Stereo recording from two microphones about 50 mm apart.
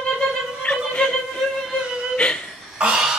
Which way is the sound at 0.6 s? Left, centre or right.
Centre.